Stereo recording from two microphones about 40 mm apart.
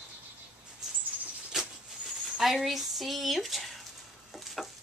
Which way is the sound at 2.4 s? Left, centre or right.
Centre.